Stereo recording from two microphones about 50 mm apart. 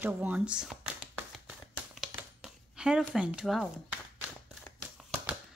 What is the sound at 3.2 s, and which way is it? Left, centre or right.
Speech, centre.